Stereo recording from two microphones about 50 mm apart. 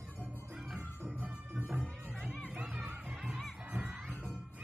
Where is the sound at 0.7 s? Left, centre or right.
Right.